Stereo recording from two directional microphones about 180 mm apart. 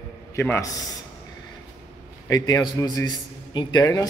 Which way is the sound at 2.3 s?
20° left (ahead or behind).